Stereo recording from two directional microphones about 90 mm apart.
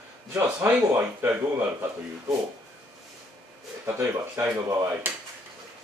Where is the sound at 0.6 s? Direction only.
30° right (ahead or behind).